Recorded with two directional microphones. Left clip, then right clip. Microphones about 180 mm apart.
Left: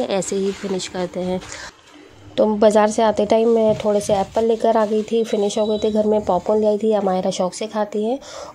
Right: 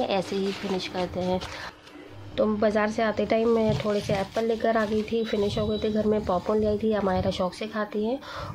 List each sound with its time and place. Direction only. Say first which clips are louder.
0.0 s speech: left 6 dB; 25° left (ahead or behind)